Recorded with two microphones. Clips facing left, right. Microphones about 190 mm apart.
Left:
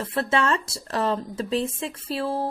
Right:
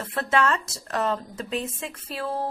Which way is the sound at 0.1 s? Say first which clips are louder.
Even; 30° left (ahead or behind).